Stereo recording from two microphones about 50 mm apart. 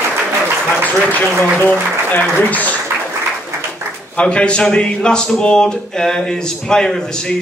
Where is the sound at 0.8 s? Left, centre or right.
Left.